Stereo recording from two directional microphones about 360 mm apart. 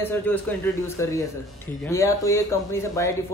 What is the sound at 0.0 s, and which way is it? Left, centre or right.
A man's voice, centre.